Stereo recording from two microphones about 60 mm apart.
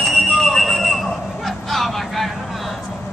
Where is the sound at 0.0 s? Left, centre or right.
Centre.